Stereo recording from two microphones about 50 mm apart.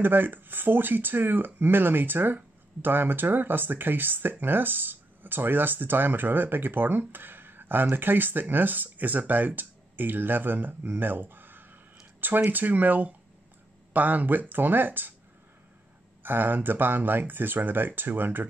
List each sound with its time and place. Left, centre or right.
0.0 s speech: right
16.2 s speech: right